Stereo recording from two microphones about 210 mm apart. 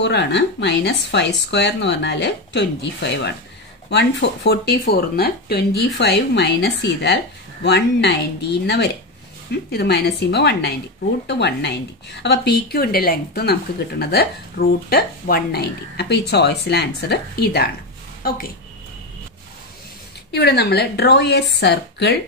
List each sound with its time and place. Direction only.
0.0 s speech: 55° left (ahead or behind)
20.2 s speech: 50° left (ahead or behind)